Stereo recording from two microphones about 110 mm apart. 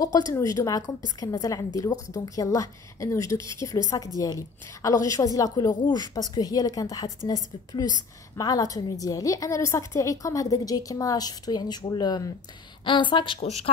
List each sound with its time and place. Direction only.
0.1 s a woman's voice: 35° left (ahead or behind)
13.4 s speech: 70° left (ahead or behind)